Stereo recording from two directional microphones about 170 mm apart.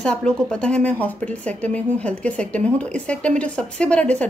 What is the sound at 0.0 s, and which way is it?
A woman's voice, 5° left (ahead or behind).